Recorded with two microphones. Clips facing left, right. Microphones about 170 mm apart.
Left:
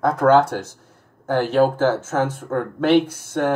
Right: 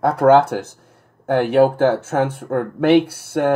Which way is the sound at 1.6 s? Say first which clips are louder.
Right 3 dB; 60° right (ahead or behind).